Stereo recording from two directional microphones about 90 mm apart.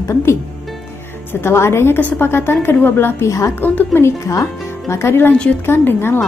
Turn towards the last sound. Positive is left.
turn(degrees=25)  # may be behind; listen again after turning